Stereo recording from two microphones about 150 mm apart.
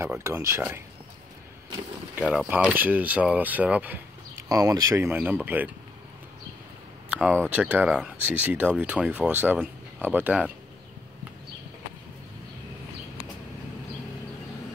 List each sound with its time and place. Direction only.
0.2 s speech: 20° right (ahead or behind)
2.1 s speech: 10° right (ahead or behind)
4.5 s speech: 25° right (ahead or behind)
7.1 s a sound: 10° right (ahead or behind)
7.4 s speech: 10° right (ahead or behind)